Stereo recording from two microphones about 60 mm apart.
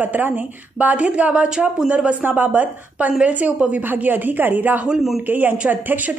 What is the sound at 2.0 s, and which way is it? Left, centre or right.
A woman's voice, right.